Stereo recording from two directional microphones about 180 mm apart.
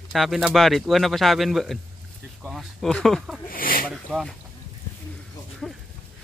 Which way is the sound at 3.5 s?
55° left (ahead or behind).